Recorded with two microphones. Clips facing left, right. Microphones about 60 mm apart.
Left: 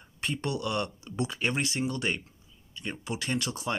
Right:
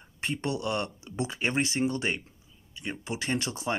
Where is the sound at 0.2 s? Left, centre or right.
Right.